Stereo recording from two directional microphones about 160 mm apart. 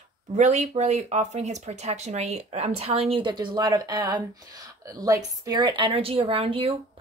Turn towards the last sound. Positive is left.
turn(degrees=-35)  # may be behind; listen again after turning